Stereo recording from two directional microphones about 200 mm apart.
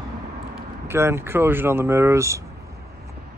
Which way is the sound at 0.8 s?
10° right (ahead or behind).